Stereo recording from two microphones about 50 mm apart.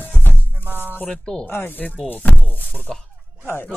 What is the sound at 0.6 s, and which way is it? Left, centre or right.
Music, right.